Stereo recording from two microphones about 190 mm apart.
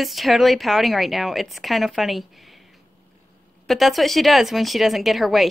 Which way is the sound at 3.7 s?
Centre (ahead or behind).